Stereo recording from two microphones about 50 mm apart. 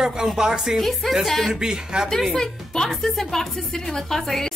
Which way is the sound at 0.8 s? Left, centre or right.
Centre.